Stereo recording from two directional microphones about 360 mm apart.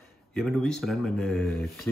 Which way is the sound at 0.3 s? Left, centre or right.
Centre.